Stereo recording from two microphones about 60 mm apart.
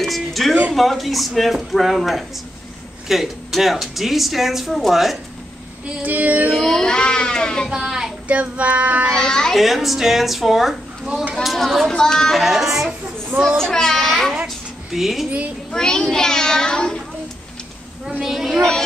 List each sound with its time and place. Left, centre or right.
0.0 s music: centre
0.7 s a woman's voice: centre
6.0 s child singing: right
6.5 s speech: centre
7.7 s speech: centre
8.3 s child singing: right
9.1 s speech: centre
9.6 s a woman's voice: centre
12.4 s a woman's voice: centre
13.6 s speech: centre
14.3 s a sound: centre
15.7 s a child's voice: centre
18.2 s a woman's voice: centre
18.6 s speech: centre